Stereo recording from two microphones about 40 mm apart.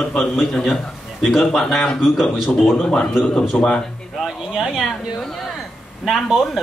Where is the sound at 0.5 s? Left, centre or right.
Centre.